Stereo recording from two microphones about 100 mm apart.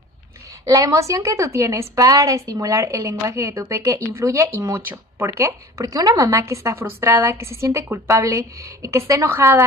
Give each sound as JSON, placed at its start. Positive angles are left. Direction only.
{"t": 0.7, "sound": "a woman's voice", "side_deg": -35}